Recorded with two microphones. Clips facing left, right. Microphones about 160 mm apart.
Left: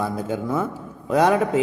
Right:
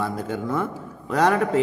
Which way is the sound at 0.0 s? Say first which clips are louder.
Left 2 dB; 5° left (ahead or behind).